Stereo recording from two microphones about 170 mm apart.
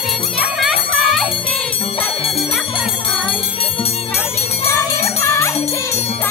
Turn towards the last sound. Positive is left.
turn(degrees=15)  # may be behind; listen again after turning